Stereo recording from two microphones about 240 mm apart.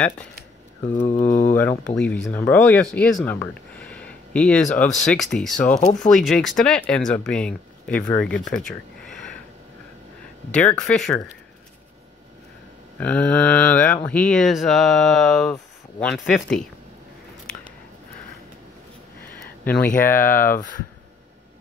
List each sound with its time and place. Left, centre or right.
1.0 s speech: left
1.5 s speech: centre
10.5 s speech: centre
13.0 s speech: centre
19.9 s speech: left